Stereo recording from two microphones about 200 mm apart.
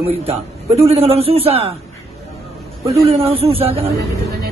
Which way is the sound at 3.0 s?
30° right (ahead or behind).